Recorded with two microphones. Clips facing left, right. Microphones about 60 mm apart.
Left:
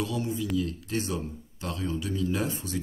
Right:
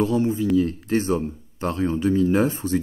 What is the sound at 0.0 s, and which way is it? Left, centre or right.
A man's voice, right.